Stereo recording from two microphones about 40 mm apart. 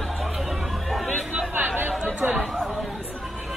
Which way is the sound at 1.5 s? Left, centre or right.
Right.